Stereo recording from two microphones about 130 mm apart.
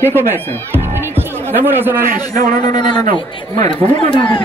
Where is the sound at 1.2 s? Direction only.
15° right (ahead or behind).